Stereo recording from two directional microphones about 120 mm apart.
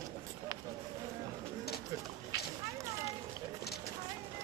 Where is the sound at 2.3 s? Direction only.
30° right (ahead or behind).